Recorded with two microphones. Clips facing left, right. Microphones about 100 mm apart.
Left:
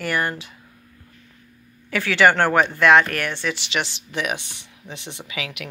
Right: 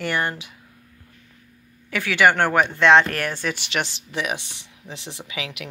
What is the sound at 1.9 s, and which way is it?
Speech, 15° right (ahead or behind).